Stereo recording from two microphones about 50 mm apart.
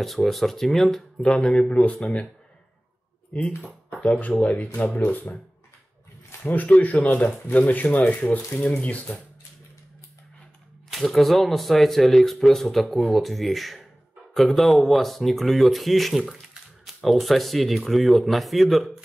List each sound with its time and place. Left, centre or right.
0.0 s speech: centre
1.2 s speech: centre
3.3 s speech: left
6.4 s speech: left
10.9 s speech: centre